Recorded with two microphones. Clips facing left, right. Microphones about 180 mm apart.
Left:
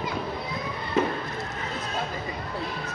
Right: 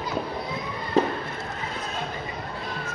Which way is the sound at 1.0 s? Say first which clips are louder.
Right 2 dB; 35° right (ahead or behind).